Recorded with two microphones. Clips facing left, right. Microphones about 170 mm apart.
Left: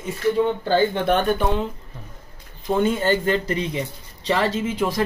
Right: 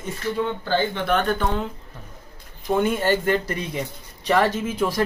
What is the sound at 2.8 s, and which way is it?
Speech, 20° left (ahead or behind).